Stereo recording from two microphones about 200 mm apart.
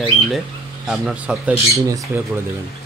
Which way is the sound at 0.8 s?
Centre (ahead or behind).